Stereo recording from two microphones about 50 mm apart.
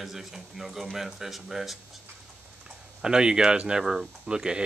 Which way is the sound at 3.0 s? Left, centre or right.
Centre.